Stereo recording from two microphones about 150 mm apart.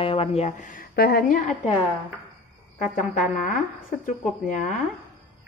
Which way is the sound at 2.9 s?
60° left (ahead or behind).